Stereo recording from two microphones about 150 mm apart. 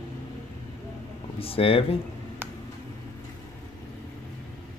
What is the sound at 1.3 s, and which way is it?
Speech, 40° left (ahead or behind).